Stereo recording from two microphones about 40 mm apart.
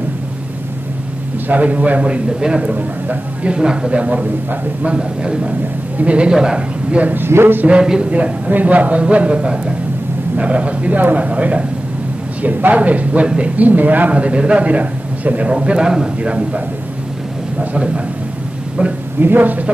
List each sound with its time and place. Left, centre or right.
1.5 s a man's voice: right
2.6 s speech: right
3.4 s speech: right
3.9 s a man's voice: right
7.2 s a sound: right
8.0 s a man's voice: right
14.1 s a man's voice: right
15.5 s speech: right
15.8 s a man's voice: centre
16.2 s a man's voice: right
19.2 s speech: right